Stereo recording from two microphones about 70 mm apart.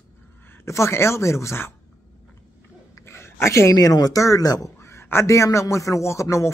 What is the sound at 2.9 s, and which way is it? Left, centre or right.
Speech, left.